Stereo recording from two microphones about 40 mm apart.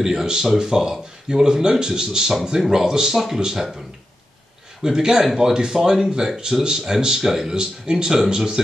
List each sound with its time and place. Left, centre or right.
0.0 s speech: centre
4.8 s speech: centre